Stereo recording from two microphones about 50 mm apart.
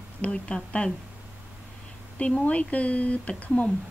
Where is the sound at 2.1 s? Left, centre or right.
Left.